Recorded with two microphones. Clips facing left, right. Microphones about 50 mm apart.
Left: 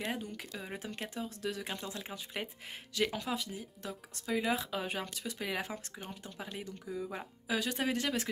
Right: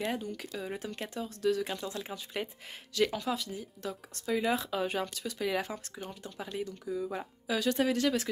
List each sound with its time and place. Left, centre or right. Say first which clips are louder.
0.0 s speech: right 4 dB; centre